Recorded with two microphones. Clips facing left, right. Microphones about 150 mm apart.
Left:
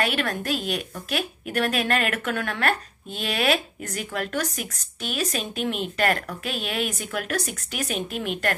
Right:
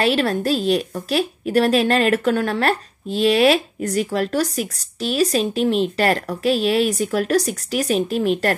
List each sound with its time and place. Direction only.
0.0 s a woman's voice: 30° right (ahead or behind)